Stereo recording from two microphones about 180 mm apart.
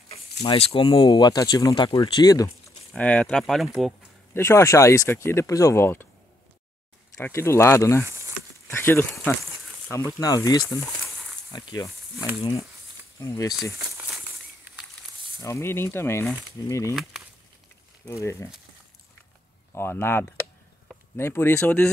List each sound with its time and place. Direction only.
0.6 s speech: 30° left (ahead or behind)
2.9 s speech: 5° left (ahead or behind)
4.3 s speech: 15° left (ahead or behind)
7.2 s speech: 15° left (ahead or behind)
12.4 s speech: 30° left (ahead or behind)
13.2 s speech: 20° left (ahead or behind)
13.9 s a sound: 10° right (ahead or behind)
15.4 s speech: 15° left (ahead or behind)
18.2 s speech: 15° left (ahead or behind)
19.7 s speech: 10° left (ahead or behind)